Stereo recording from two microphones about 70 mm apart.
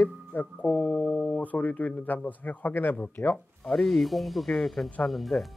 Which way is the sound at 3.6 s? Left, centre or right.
Centre.